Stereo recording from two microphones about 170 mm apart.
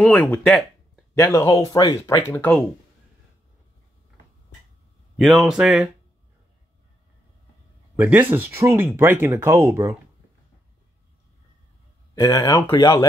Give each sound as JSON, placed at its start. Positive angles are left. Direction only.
{"t": 0.0, "sound": "speech", "side_deg": 5}
{"t": 1.1, "sound": "speech", "side_deg": 20}
{"t": 5.1, "sound": "speech", "side_deg": 0}
{"t": 7.9, "sound": "speech", "side_deg": -10}
{"t": 12.2, "sound": "speech", "side_deg": 25}